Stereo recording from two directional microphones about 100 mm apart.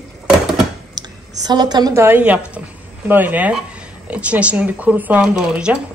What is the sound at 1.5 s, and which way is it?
Speech, 45° right (ahead or behind).